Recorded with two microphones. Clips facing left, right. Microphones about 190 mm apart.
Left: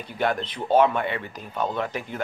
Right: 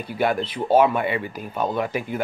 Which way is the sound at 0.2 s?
10° right (ahead or behind).